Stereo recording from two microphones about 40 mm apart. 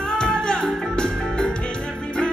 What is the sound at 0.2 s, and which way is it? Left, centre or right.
Music, left.